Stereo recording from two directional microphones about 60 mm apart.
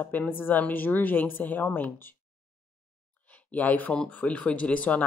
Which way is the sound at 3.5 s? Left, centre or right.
Left.